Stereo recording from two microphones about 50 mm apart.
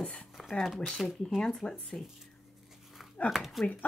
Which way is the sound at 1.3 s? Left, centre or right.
Centre.